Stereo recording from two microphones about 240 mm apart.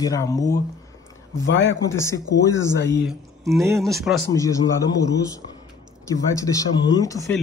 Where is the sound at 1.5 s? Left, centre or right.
Left.